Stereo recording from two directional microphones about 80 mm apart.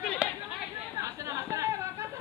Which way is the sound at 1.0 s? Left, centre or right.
Right.